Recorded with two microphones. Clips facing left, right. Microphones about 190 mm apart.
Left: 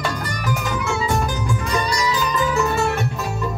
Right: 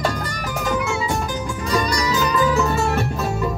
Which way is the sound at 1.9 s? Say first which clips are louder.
Right 1 dB; 45° right (ahead or behind).